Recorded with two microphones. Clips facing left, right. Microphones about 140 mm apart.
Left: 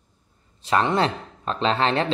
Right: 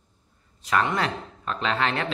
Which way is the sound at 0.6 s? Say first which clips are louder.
Left 4 dB; 30° left (ahead or behind).